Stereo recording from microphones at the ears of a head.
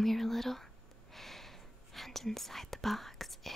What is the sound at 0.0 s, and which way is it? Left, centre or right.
Whispering, centre.